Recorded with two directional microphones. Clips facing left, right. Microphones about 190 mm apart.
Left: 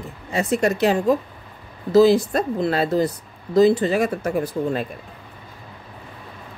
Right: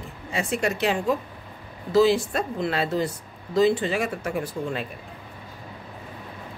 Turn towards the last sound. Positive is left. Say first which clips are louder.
# left 6 dB
turn(degrees=40)  # may be behind; listen again after turning